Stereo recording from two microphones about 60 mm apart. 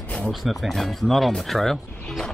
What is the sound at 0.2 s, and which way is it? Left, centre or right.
Speech, centre.